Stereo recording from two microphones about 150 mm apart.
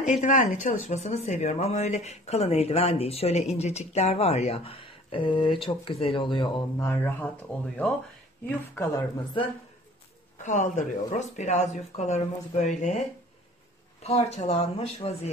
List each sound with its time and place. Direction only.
0.0 s speech: 50° left (ahead or behind); by 6.5 s 35° left (ahead or behind)
6.8 s speech: 15° left (ahead or behind)
8.5 s speech: 15° left (ahead or behind)
10.4 s speech: 55° left (ahead or behind)
14.0 s speech: 45° left (ahead or behind)